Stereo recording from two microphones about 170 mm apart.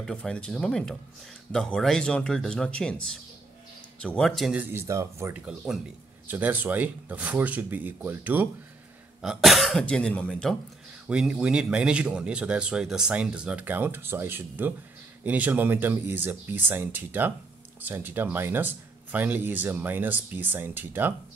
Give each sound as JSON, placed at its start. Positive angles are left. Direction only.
{"t": 0.0, "sound": "speech", "side_deg": 5}
{"t": 5.7, "sound": "speech", "side_deg": 0}
{"t": 11.1, "sound": "speech", "side_deg": -5}